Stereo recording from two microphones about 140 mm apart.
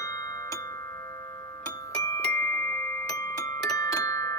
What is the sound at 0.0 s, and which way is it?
Music, 25° left (ahead or behind).